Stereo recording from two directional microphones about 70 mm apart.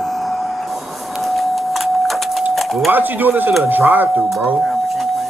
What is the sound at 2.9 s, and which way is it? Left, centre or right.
A man's voice, right.